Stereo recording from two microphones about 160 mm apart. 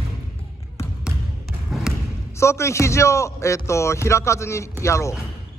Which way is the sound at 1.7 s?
Centre (ahead or behind).